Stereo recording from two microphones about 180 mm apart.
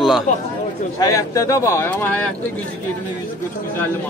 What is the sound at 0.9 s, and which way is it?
Speech, 15° left (ahead or behind).